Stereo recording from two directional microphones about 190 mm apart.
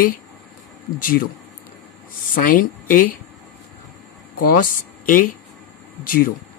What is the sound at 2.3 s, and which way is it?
Speech, 45° left (ahead or behind).